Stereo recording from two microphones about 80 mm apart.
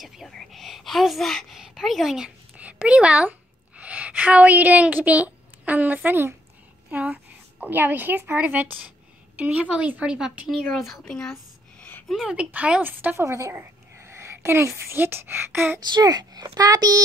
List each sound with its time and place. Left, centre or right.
0.0 s a woman's voice: centre
2.5 s a woman's voice: centre
10.1 s a woman's voice: centre
10.7 s speech: centre
12.1 s a woman's voice: centre
12.4 s a woman's voice: centre
12.8 s a woman's voice: right
15.9 s a woman's voice: right